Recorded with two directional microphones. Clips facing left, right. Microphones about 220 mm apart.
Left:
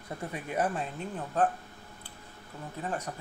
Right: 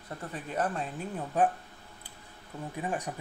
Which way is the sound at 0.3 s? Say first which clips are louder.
Left 1 dB; 10° left (ahead or behind).